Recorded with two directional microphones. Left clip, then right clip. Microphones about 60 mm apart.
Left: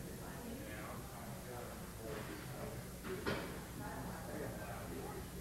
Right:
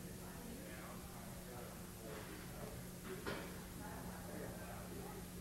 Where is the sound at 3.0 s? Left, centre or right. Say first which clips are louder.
Left 5 dB; centre.